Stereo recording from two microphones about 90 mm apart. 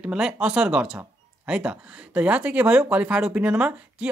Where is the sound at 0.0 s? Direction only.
10° right (ahead or behind).